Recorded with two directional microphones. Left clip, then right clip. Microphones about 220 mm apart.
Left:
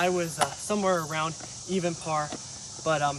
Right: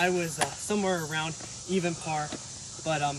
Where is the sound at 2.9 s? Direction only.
35° left (ahead or behind).